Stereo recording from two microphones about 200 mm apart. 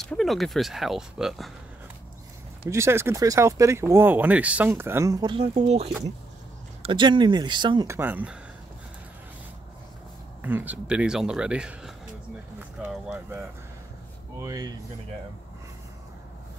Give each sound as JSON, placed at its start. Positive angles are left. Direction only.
{"t": 0.0, "sound": "speech", "side_deg": 0}
{"t": 2.7, "sound": "speech", "side_deg": -15}
{"t": 10.4, "sound": "speech", "side_deg": -10}
{"t": 14.4, "sound": "speech", "side_deg": -20}